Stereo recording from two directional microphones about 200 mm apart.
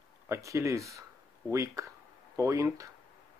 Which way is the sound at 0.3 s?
15° right (ahead or behind).